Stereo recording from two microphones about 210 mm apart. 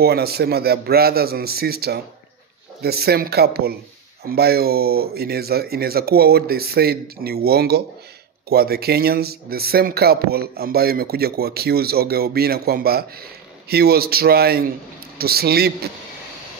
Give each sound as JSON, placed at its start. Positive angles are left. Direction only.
{"t": 0.0, "sound": "speech", "side_deg": -50}